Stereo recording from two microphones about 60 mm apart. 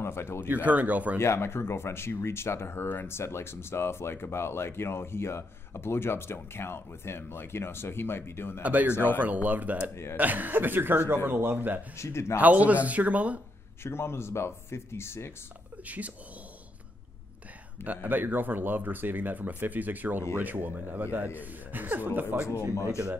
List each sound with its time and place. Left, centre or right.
0.0 s speech: left
0.5 s speech: right
1.2 s speech: left
8.6 s speech: right
12.0 s speech: left
12.4 s speech: right
13.8 s speech: left
17.8 s speech: right
22.8 s speech: left